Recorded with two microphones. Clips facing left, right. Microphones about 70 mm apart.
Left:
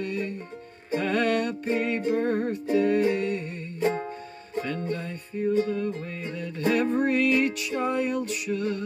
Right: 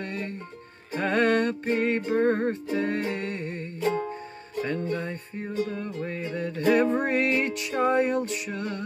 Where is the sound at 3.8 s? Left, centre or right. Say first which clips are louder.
Left 1 dB; centre.